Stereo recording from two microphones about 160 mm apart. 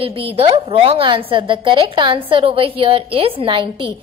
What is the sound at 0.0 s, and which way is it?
A woman's voice, 35° right (ahead or behind).